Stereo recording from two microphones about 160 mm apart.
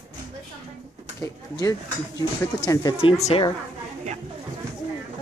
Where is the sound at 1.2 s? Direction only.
20° left (ahead or behind).